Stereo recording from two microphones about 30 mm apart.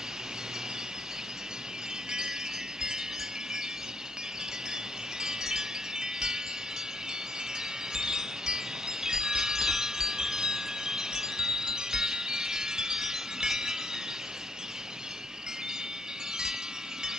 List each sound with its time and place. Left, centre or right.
5.2 s wind chime: centre
7.9 s wind chime: centre